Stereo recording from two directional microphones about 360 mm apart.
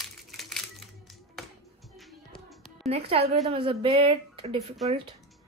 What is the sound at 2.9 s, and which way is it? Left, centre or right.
A woman's voice, centre.